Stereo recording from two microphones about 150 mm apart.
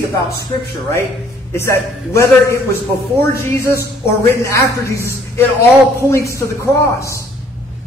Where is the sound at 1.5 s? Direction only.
20° left (ahead or behind).